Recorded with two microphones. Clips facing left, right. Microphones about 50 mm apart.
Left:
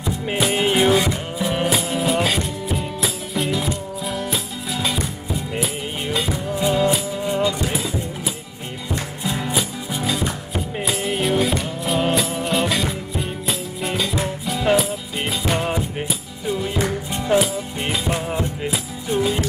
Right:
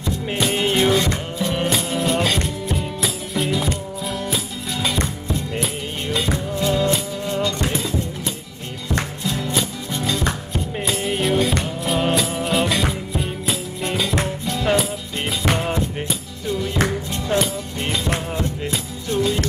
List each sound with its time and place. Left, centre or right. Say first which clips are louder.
0.0 s music: left 1 dB; centre
9.2 s music: even; centre
9.6 s music: even; centre